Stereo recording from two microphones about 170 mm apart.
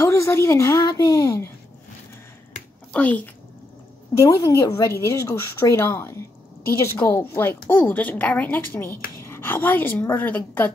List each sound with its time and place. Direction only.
0.0 s a woman's voice: 15° left (ahead or behind)
2.9 s speech: 10° left (ahead or behind)
4.2 s a woman's voice: 20° left (ahead or behind)